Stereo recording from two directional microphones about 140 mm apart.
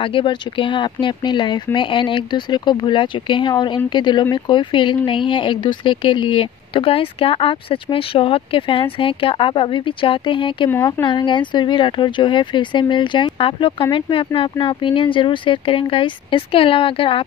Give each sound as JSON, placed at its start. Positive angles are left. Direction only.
{"t": 0.0, "sound": "speech", "side_deg": 40}